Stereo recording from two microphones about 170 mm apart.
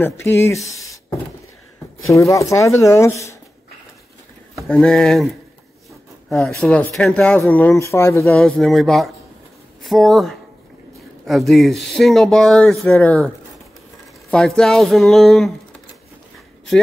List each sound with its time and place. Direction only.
0.0 s speech: 15° left (ahead or behind)
0.7 s a sound: 20° left (ahead or behind)
2.0 s speech: 20° left (ahead or behind)
4.6 s speech: 5° left (ahead or behind)
8.3 s speech: 5° left (ahead or behind)
14.3 s speech: 5° left (ahead or behind)